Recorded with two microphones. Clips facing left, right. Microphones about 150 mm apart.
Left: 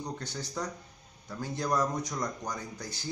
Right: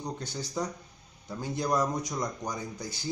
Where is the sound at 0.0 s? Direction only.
15° right (ahead or behind).